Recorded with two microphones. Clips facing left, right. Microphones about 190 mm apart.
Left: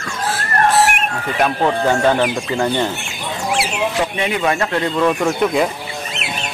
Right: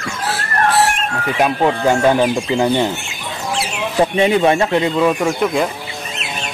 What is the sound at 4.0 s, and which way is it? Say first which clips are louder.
Speech: right 10 dB; 30° right (ahead or behind).